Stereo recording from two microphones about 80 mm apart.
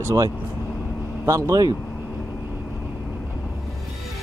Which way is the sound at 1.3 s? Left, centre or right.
Right.